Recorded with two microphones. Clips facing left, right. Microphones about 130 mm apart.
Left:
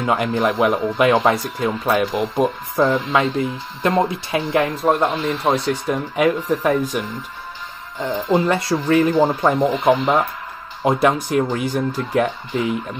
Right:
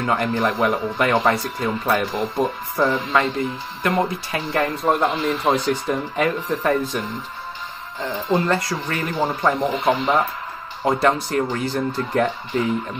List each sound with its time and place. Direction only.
0.0 s a man's voice: 15° left (ahead or behind)
1.6 s speech: 5° left (ahead or behind)
2.1 s speech: 15° left (ahead or behind)
4.6 s speech: 5° left (ahead or behind)
8.5 s speech: 25° left (ahead or behind)